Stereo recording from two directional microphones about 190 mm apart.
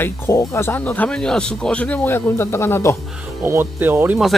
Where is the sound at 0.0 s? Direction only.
15° left (ahead or behind).